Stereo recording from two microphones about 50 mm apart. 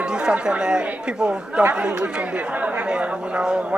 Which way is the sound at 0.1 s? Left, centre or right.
Centre.